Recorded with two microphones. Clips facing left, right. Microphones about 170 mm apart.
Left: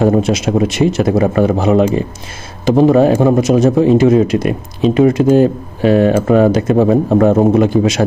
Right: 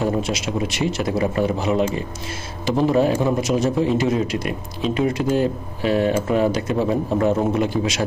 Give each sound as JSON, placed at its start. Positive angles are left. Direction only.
{"t": 0.0, "sound": "a man's voice", "side_deg": 50}